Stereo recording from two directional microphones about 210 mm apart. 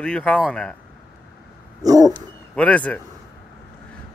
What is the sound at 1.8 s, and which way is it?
Dog, 15° right (ahead or behind).